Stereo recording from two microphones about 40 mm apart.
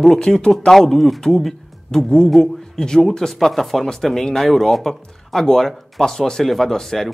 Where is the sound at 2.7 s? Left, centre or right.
Centre.